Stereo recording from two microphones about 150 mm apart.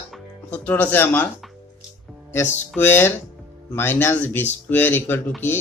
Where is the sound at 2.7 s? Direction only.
15° left (ahead or behind).